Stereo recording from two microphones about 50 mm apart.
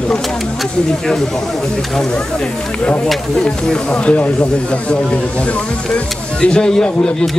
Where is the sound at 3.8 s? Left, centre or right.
Left.